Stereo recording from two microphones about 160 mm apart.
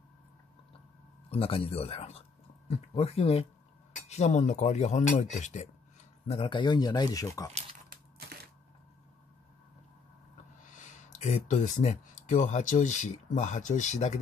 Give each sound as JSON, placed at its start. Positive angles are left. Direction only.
{"t": 1.3, "sound": "speech", "side_deg": 35}
{"t": 10.3, "sound": "speech", "side_deg": 50}